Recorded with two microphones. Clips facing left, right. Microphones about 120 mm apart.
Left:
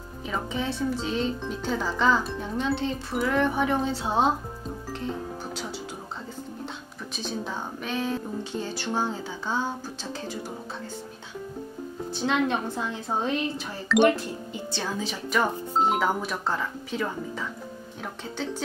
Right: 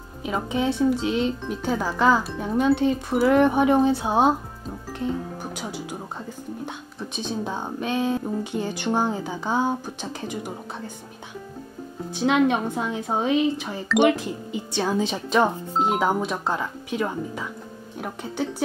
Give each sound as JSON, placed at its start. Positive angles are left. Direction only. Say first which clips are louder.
{"t": 0.2, "sound": "speech", "louder": "right 5 dB", "side_deg": -15}
{"t": 4.9, "sound": "music", "louder": "right 6 dB", "side_deg": -10}
{"t": 7.0, "sound": "speech", "louder": "right 4 dB", "side_deg": -20}
{"t": 12.1, "sound": "speech", "louder": "right 5 dB", "side_deg": -15}
{"t": 15.7, "sound": "speech", "louder": "right 1 dB", "side_deg": 0}
{"t": 16.0, "sound": "speech", "louder": "right 3 dB", "side_deg": -15}